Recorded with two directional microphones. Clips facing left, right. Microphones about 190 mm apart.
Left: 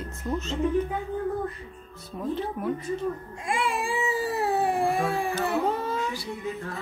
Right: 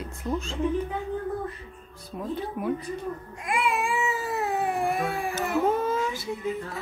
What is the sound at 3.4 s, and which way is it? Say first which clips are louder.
Baby cry: right 1 dB; 30° left (ahead or behind).